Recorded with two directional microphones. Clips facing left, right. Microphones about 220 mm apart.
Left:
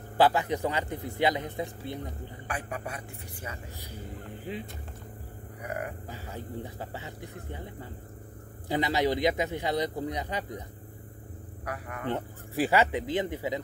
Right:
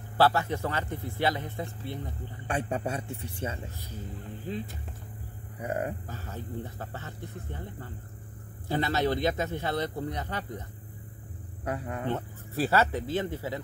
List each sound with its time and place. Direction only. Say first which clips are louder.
0.2 s speech: left 1 dB; 15° left (ahead or behind)
2.4 s a man's voice: right 6 dB; 30° right (ahead or behind)
5.6 s a man's voice: right 4 dB; 25° right (ahead or behind)
6.0 s speech: even; 15° left (ahead or behind)
11.6 s a man's voice: right 4 dB; 25° right (ahead or behind)
12.1 s speech: left 4 dB; 15° left (ahead or behind)